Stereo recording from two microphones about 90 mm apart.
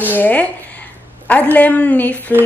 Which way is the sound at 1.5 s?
15° left (ahead or behind).